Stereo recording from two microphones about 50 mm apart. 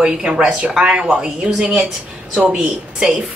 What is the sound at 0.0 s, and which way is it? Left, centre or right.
Speech, centre.